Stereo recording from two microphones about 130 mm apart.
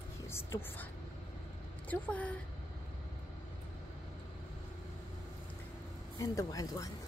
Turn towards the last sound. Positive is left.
turn(degrees=30)  # may be behind; listen again after turning